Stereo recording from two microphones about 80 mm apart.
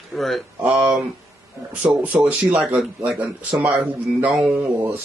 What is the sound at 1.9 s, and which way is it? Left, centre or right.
Speech, right.